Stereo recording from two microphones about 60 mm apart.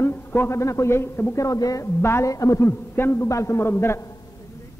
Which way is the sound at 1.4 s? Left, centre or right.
Left.